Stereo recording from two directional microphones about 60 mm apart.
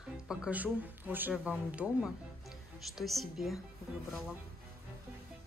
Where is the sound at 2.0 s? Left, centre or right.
Centre.